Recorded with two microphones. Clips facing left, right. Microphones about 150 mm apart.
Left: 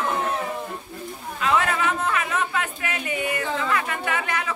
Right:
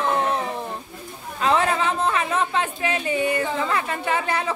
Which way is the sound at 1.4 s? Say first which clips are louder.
Right 2 dB; 30° right (ahead or behind).